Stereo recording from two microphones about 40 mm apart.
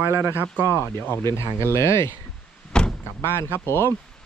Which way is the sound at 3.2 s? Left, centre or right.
Left.